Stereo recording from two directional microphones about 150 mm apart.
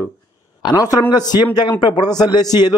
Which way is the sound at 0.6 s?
25° left (ahead or behind).